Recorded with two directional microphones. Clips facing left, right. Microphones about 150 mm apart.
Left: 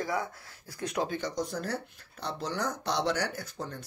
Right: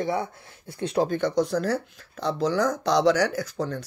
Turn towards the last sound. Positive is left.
turn(degrees=-90)